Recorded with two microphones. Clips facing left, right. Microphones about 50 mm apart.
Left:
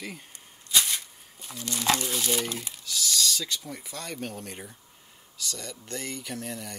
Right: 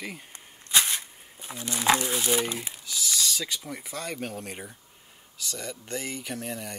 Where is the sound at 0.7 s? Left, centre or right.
Right.